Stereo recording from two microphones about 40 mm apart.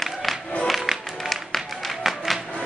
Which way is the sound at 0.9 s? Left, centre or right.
Centre.